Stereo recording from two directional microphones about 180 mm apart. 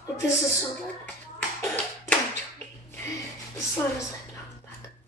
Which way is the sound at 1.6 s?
10° left (ahead or behind).